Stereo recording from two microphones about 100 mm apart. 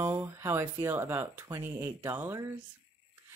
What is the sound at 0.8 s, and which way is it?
Speech, 25° right (ahead or behind).